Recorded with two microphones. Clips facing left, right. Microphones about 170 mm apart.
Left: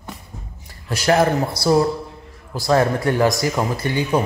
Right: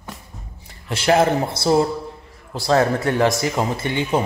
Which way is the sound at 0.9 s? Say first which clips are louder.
Even; 25° right (ahead or behind).